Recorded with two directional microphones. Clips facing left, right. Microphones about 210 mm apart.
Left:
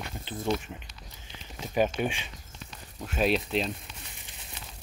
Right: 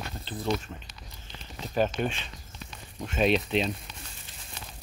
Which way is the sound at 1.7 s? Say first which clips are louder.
Even; 10° left (ahead or behind).